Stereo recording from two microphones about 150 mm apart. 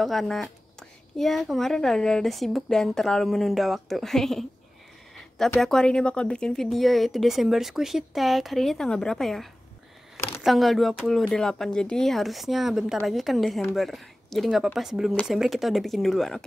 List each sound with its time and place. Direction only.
0.0 s speech: centre (ahead or behind)
10.1 s a sound: 20° left (ahead or behind)
10.4 s speech: centre (ahead or behind)